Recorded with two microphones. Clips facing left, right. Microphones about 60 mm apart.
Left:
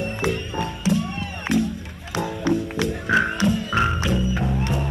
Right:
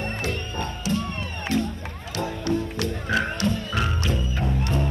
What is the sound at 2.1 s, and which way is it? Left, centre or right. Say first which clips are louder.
Music: left 3 dB; centre.